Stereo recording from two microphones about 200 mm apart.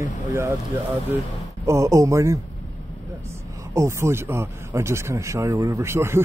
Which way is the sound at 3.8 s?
15° right (ahead or behind).